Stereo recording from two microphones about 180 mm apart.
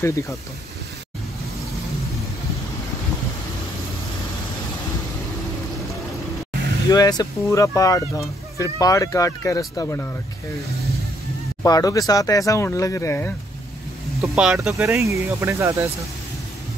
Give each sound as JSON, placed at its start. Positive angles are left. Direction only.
{"t": 0.0, "sound": "speech", "side_deg": 15}
{"t": 6.9, "sound": "speech", "side_deg": 20}
{"t": 11.6, "sound": "speech", "side_deg": 20}
{"t": 14.2, "sound": "speech", "side_deg": -5}
{"t": 15.0, "sound": "speech", "side_deg": -15}